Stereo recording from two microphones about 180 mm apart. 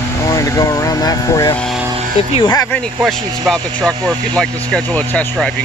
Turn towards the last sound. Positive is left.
turn(degrees=5)  # may be behind; listen again after turning